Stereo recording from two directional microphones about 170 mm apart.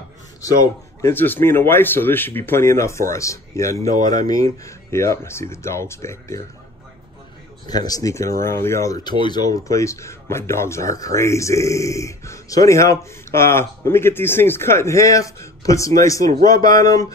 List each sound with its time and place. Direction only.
0.4 s speech: 15° left (ahead or behind)
7.6 s speech: 20° left (ahead or behind)